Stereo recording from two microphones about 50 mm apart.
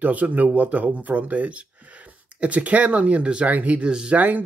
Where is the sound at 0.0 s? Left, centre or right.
Right.